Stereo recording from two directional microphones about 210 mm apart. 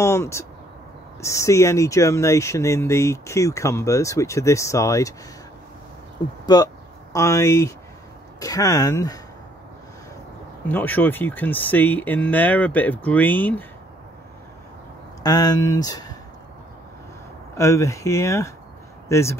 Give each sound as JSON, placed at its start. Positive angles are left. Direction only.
{"t": 0.0, "sound": "speech", "side_deg": 15}
{"t": 6.4, "sound": "speech", "side_deg": 20}
{"t": 10.7, "sound": "speech", "side_deg": 10}
{"t": 15.2, "sound": "speech", "side_deg": 20}
{"t": 17.6, "sound": "speech", "side_deg": 15}